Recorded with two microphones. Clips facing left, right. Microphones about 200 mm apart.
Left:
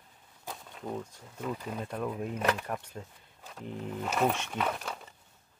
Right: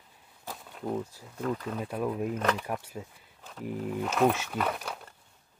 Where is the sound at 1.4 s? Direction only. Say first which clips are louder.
Right 4 dB; 10° left (ahead or behind).